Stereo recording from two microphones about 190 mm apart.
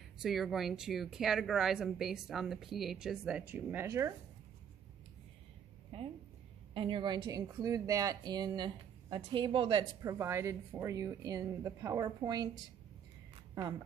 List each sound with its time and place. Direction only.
0.2 s speech: centre (ahead or behind)
5.9 s a sound: 30° right (ahead or behind)
6.7 s a woman's voice: 25° right (ahead or behind)